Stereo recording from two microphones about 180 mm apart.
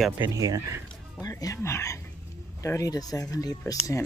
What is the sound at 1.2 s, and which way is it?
Speech, 20° left (ahead or behind).